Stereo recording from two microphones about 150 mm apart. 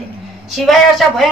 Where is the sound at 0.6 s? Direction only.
Centre (ahead or behind).